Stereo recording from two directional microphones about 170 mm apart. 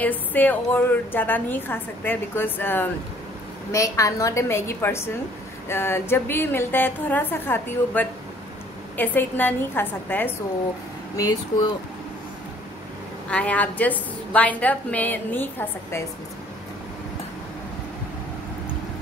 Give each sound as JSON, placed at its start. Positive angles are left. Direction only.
{"t": 0.0, "sound": "a woman's voice", "side_deg": 10}
{"t": 11.1, "sound": "speech", "side_deg": 20}
{"t": 13.3, "sound": "a woman's voice", "side_deg": 10}